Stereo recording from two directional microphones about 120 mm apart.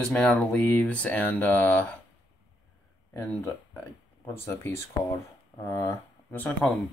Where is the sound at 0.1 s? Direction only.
10° left (ahead or behind).